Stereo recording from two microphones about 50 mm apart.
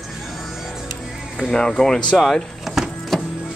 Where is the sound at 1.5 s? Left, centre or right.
Centre.